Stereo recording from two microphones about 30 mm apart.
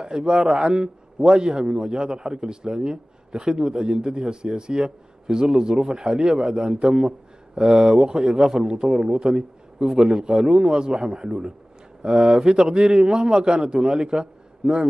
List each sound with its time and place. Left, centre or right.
0.0 s a man's voice: right